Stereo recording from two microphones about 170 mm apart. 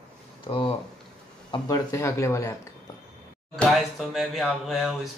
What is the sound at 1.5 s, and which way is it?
A man's voice, 20° left (ahead or behind).